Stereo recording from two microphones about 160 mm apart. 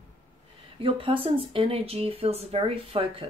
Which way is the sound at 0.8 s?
35° right (ahead or behind).